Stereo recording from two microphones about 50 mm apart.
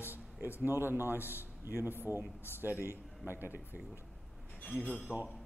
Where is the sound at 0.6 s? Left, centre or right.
Right.